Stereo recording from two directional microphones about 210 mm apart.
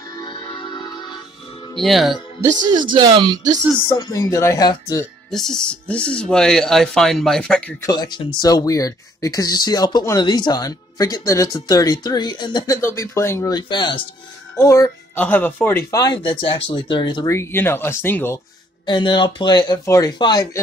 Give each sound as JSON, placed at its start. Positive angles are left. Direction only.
{"t": 0.1, "sound": "music", "side_deg": 20}
{"t": 1.8, "sound": "speech", "side_deg": 0}
{"t": 2.8, "sound": "speech", "side_deg": -20}
{"t": 3.9, "sound": "speech", "side_deg": 20}
{"t": 5.3, "sound": "speech", "side_deg": 0}
{"t": 7.8, "sound": "speech", "side_deg": 20}
{"t": 18.9, "sound": "speech", "side_deg": 20}